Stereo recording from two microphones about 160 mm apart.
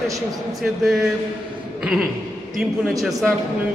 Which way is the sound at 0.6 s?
Centre (ahead or behind).